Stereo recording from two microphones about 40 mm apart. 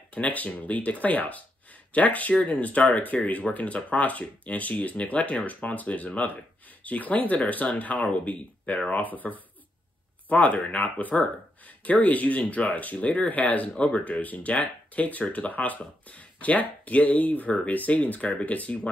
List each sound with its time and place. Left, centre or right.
0.1 s speech: left
8.9 s speech: left